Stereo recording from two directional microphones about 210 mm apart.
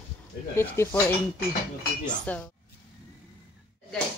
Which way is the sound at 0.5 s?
10° left (ahead or behind).